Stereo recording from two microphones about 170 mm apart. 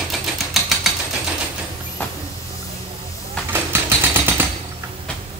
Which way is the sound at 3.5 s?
15° right (ahead or behind).